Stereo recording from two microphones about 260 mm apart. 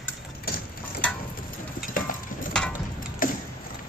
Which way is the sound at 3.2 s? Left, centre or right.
Left.